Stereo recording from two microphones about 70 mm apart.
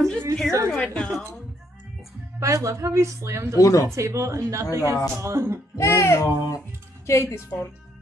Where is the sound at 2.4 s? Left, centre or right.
Right.